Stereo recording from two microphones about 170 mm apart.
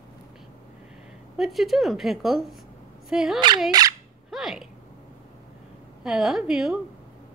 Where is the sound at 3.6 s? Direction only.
25° right (ahead or behind).